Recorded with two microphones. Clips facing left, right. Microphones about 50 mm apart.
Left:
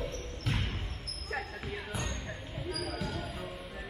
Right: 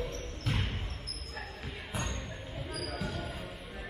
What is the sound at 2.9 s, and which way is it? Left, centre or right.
Basketball bounce, centre.